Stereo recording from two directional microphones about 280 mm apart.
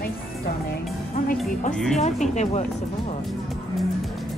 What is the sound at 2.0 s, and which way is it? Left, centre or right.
Speech, left.